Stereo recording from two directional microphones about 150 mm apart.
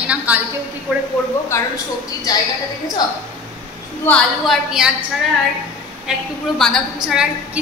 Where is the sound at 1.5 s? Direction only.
15° left (ahead or behind).